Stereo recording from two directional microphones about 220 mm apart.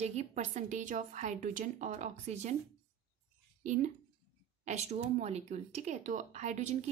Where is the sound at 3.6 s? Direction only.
35° right (ahead or behind).